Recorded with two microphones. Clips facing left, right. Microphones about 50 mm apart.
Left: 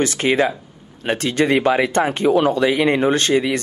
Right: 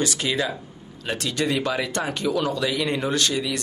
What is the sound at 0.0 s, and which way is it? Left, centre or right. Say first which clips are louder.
Speech: left 7 dB; left.